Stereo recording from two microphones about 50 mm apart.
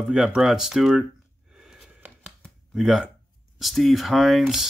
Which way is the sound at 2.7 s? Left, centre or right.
Centre.